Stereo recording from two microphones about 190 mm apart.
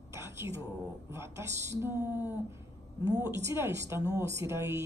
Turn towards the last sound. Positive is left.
turn(degrees=-15)  # may be behind; listen again after turning